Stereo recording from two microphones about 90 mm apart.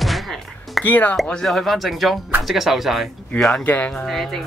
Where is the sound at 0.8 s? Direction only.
20° left (ahead or behind).